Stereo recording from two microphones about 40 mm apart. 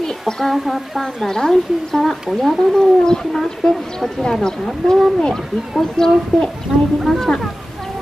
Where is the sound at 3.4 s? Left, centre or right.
Centre.